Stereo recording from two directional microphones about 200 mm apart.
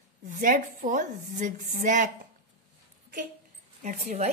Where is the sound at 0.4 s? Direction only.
40° right (ahead or behind).